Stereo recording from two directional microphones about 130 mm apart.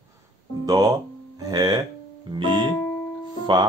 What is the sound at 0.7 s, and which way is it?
Speech, 30° right (ahead or behind).